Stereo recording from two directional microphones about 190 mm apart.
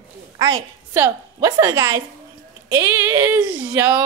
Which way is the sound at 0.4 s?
25° right (ahead or behind).